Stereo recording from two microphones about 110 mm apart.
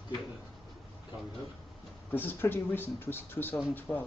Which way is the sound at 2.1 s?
20° left (ahead or behind).